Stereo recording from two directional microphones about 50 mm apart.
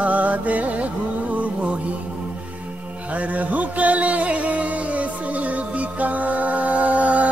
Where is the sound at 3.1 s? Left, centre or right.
Right.